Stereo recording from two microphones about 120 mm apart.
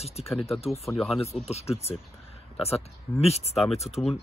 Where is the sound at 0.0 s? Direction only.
60° left (ahead or behind).